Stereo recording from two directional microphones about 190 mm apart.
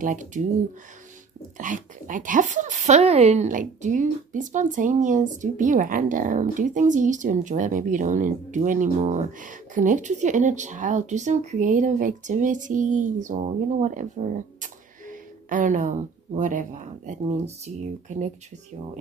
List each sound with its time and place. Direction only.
0.0 s speech: 40° right (ahead or behind)
1.6 s speech: 45° right (ahead or behind)